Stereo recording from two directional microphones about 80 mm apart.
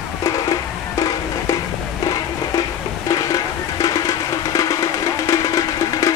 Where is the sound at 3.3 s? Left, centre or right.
Left.